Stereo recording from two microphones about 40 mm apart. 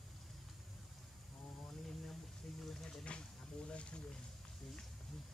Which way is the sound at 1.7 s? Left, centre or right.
Centre.